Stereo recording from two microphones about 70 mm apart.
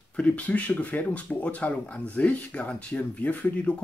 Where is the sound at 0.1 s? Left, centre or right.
Centre.